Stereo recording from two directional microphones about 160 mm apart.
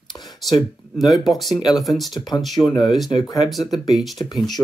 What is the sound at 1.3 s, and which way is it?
Speech, centre (ahead or behind).